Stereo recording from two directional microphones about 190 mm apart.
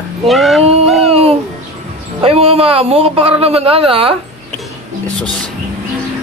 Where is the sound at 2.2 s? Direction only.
30° right (ahead or behind).